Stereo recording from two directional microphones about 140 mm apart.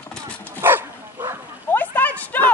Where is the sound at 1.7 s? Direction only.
10° left (ahead or behind).